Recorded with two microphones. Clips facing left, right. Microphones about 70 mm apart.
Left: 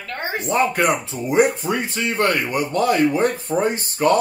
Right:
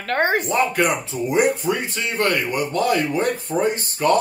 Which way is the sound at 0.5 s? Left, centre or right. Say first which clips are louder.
Left 1 dB; left.